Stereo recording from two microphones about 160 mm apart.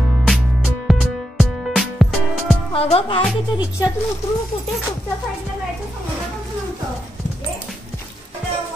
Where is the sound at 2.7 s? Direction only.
35° left (ahead or behind).